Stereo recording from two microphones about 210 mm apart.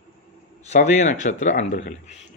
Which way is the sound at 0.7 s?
35° left (ahead or behind).